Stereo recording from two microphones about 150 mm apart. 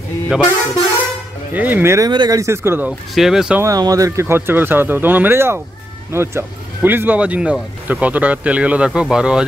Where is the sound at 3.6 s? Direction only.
25° right (ahead or behind).